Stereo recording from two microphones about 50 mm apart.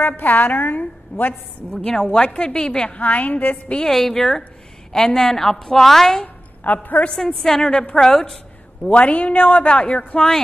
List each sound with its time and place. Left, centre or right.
0.0 s a woman's voice: left
1.8 s a man's voice: centre
3.0 s a man's voice: left
3.8 s a woman's voice: centre
6.2 s a sound: left
7.2 s a woman's voice: centre
8.8 s a man's voice: left